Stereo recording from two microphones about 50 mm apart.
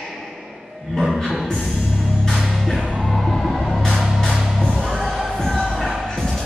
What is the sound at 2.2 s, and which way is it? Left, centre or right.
Music, centre.